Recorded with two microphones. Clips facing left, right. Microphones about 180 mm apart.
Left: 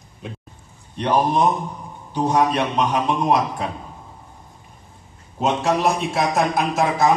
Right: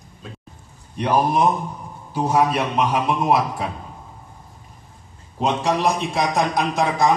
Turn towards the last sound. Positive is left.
turn(degrees=5)  # may be behind; listen again after turning